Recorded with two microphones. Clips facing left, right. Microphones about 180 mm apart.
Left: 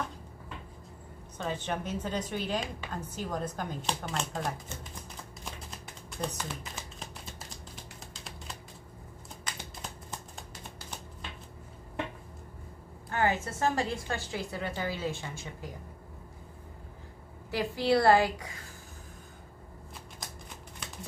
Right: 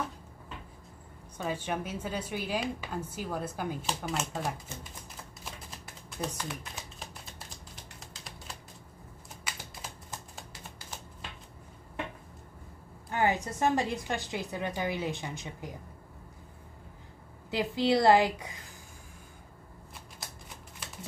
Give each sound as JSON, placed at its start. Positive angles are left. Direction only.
{"t": 1.4, "sound": "a woman's voice", "side_deg": -10}
{"t": 5.4, "sound": "computer keyboard", "side_deg": 0}
{"t": 8.1, "sound": "typing", "side_deg": 0}
{"t": 13.1, "sound": "a woman's voice", "side_deg": -15}
{"t": 17.5, "sound": "a woman's voice", "side_deg": -20}